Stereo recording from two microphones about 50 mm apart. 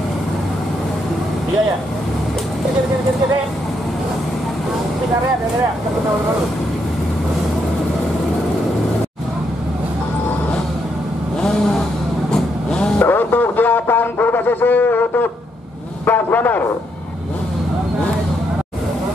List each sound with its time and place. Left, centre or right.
12.3 s vehicle: centre
13.0 s music: left
16.1 s a man's voice: left